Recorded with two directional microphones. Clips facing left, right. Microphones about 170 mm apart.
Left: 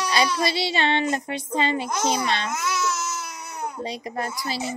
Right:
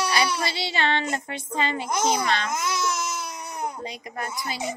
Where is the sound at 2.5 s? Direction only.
15° right (ahead or behind).